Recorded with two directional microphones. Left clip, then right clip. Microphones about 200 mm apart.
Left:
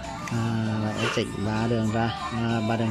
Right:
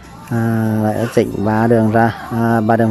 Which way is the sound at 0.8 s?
35° right (ahead or behind).